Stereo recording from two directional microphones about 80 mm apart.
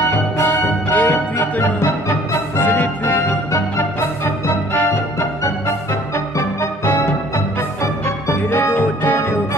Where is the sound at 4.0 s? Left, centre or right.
Left.